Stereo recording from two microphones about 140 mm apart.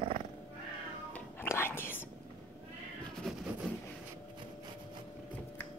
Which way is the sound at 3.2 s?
Centre (ahead or behind).